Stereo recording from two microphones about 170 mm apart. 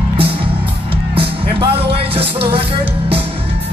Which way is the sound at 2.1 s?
35° right (ahead or behind).